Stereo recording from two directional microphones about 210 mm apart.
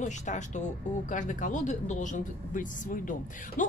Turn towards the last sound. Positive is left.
turn(degrees=40)  # may be behind; listen again after turning